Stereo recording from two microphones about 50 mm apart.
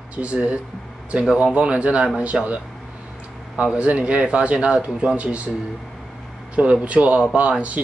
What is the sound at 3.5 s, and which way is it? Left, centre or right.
Speech, centre.